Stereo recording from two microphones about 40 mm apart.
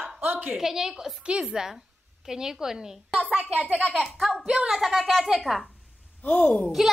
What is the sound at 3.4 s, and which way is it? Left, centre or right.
Speech, left.